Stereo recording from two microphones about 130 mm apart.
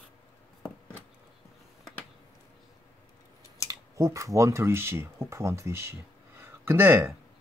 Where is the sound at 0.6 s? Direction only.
10° left (ahead or behind).